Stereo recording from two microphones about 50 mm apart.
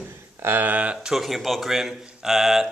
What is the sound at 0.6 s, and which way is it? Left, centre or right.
Speech, right.